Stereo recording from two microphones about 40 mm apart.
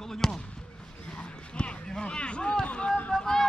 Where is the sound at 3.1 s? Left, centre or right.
Centre.